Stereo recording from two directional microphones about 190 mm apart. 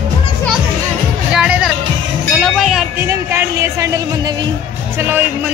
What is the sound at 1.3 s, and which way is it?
Music, 5° right (ahead or behind).